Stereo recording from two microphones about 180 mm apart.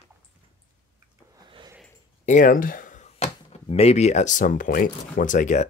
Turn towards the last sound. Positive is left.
turn(degrees=45)  # may be behind; listen again after turning